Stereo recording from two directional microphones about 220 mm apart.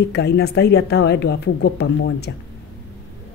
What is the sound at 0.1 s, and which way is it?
Speech, 45° left (ahead or behind).